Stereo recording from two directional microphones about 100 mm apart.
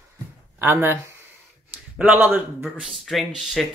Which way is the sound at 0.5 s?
20° right (ahead or behind).